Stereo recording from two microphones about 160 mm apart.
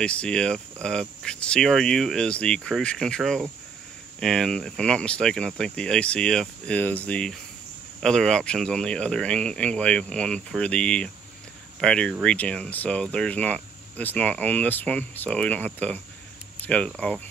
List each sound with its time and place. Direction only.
0.0 s speech: 5° left (ahead or behind)